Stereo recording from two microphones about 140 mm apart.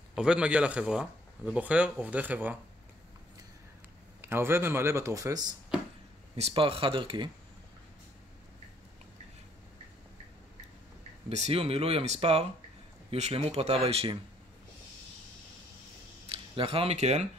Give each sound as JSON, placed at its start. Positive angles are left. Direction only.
{"t": 0.1, "sound": "speech", "side_deg": -5}
{"t": 4.2, "sound": "speech", "side_deg": -15}
{"t": 6.3, "sound": "speech", "side_deg": -45}
{"t": 11.2, "sound": "speech", "side_deg": -50}
{"t": 16.3, "sound": "speech", "side_deg": -40}